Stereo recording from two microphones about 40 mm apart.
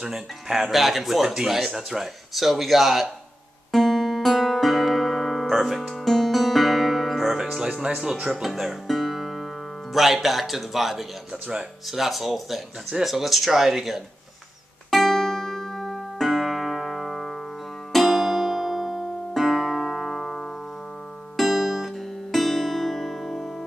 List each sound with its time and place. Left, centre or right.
0.0 s speech: centre
3.7 s music: centre
7.8 s speech: centre
8.5 s music: centre
9.9 s speech: centre
14.9 s music: centre